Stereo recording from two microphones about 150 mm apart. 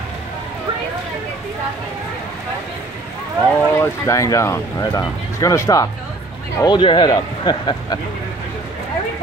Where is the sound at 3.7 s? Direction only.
15° left (ahead or behind).